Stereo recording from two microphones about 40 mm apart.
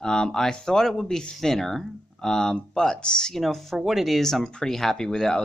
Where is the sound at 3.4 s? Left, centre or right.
Centre.